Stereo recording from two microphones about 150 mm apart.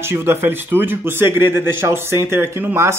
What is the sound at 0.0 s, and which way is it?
A man's voice, 15° right (ahead or behind).